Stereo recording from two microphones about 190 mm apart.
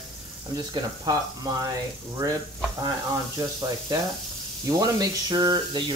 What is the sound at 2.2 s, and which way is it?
Sizzle, 20° right (ahead or behind).